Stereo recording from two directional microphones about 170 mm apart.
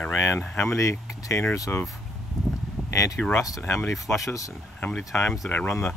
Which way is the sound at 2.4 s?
Centre (ahead or behind).